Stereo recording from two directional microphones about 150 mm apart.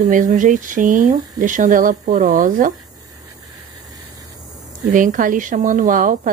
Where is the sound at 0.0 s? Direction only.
60° right (ahead or behind).